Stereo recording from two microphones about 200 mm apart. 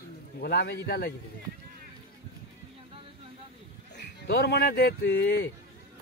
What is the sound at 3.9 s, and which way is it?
Speech, 60° left (ahead or behind).